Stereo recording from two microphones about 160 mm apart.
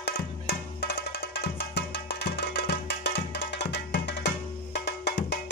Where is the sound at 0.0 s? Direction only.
90° left.